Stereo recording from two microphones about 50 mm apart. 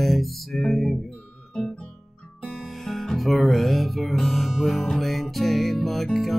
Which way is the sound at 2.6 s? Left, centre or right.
Centre.